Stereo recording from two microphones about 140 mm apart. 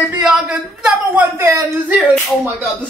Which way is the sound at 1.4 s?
20° right (ahead or behind).